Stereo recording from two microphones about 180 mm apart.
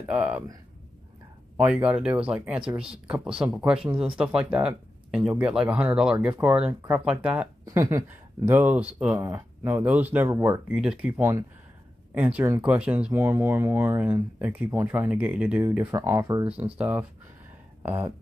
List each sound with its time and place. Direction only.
0.0 s speech: 5° right (ahead or behind)
1.6 s speech: 5° right (ahead or behind)
10.7 s speech: 5° right (ahead or behind)